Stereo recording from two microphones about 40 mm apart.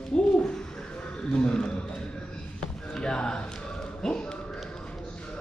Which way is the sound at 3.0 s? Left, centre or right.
Centre.